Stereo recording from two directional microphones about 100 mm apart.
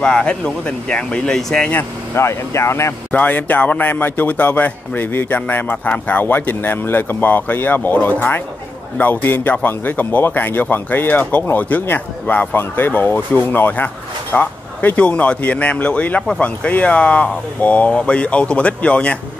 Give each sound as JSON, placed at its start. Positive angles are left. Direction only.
{"t": 0.0, "sound": "speech", "side_deg": 10}
{"t": 1.7, "sound": "a man's voice", "side_deg": 25}
{"t": 3.1, "sound": "a man's voice", "side_deg": 15}